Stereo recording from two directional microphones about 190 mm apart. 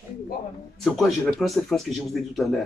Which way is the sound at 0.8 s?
Centre (ahead or behind).